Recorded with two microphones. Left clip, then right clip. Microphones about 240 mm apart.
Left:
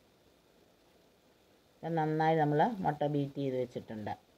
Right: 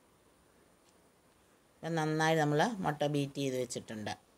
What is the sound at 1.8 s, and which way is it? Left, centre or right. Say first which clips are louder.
Speech: left 1 dB; centre.